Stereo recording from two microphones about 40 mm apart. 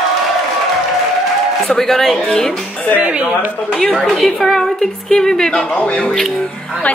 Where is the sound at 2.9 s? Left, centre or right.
Right.